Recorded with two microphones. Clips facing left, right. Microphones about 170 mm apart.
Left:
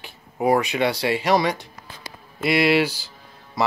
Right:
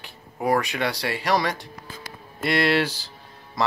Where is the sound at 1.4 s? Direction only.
Centre (ahead or behind).